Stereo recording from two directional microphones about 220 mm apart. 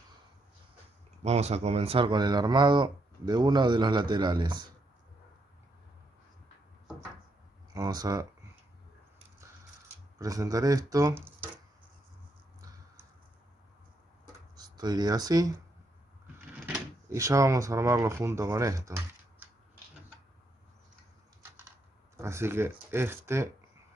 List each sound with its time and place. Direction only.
1.2 s speech: 30° right (ahead or behind)
7.7 s speech: 15° right (ahead or behind)
10.1 s speech: 15° right (ahead or behind)
14.6 s speech: 20° right (ahead or behind)
16.6 s speech: 10° right (ahead or behind)
22.1 s speech: 10° right (ahead or behind)